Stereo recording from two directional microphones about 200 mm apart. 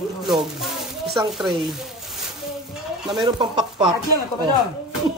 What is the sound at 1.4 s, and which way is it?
Speech, 20° right (ahead or behind).